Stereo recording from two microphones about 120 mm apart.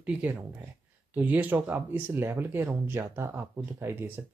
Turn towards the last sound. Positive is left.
turn(degrees=-20)  # may be behind; listen again after turning